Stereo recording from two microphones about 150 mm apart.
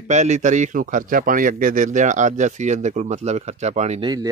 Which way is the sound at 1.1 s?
65° right (ahead or behind).